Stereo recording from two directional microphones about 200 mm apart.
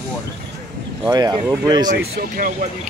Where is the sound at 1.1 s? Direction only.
20° right (ahead or behind).